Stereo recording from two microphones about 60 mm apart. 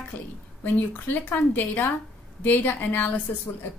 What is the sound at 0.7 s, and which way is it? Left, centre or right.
A woman's voice, left.